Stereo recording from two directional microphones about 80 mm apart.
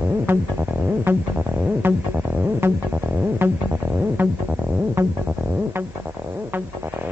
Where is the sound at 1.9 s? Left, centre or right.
Right.